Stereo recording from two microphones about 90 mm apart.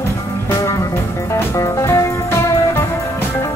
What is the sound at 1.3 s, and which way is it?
Music, 35° left (ahead or behind).